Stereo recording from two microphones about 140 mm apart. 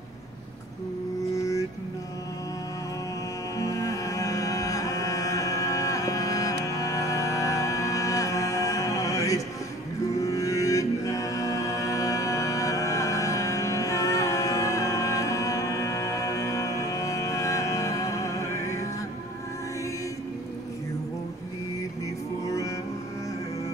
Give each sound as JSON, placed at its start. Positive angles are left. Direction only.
{"t": 1.3, "sound": "mantra", "side_deg": 25}
{"t": 3.5, "sound": "music", "side_deg": 25}